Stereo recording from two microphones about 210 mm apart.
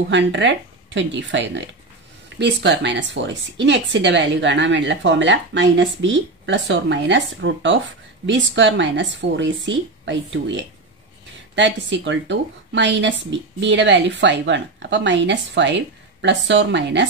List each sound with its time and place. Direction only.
0.1 s speech: 60° right (ahead or behind)